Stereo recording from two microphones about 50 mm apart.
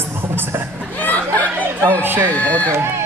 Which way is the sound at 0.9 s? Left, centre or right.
Left.